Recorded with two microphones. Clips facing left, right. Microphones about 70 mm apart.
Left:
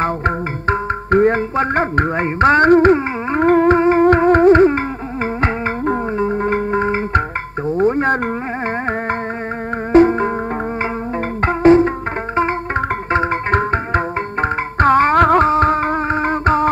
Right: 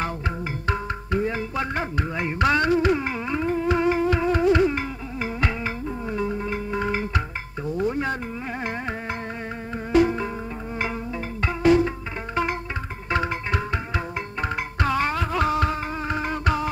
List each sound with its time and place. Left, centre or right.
0.0 s music: left
7.6 s a sound: left
9.9 s music: left
11.4 s music: left
13.5 s music: left